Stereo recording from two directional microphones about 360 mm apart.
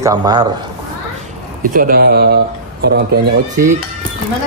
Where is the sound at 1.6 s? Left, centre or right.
Right.